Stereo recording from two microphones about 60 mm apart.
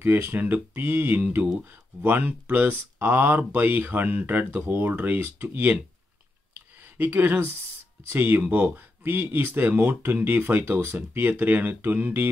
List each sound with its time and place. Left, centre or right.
0.0 s speech: right
6.5 s a sound: right
8.0 s speech: right